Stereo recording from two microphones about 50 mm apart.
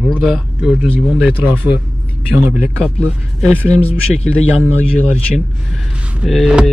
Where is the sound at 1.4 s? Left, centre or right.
Right.